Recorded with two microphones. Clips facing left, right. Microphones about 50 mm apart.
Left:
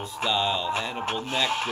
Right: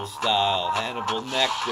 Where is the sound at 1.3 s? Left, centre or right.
Left.